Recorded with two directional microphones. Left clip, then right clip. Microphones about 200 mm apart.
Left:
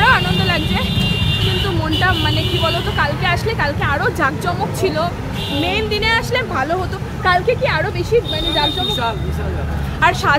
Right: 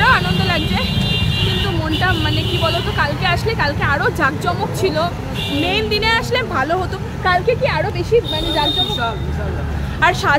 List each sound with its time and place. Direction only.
0.0 s vehicle: 5° right (ahead or behind)
2.0 s speech: 5° right (ahead or behind)
9.9 s speech: 20° right (ahead or behind)